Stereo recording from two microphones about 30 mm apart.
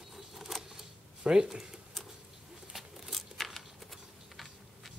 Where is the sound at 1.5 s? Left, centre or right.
Centre.